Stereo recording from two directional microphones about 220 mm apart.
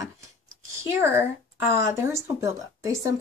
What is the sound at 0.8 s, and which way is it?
Speech, 10° right (ahead or behind).